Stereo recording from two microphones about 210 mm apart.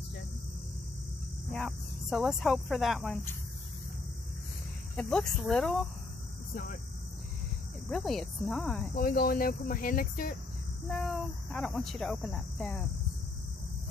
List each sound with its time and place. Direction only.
1.5 s speech: centre (ahead or behind)
4.9 s speech: 5° left (ahead or behind)
6.5 s speech: 45° left (ahead or behind)
7.9 s speech: centre (ahead or behind)
8.9 s speech: 45° left (ahead or behind)
10.9 s speech: centre (ahead or behind)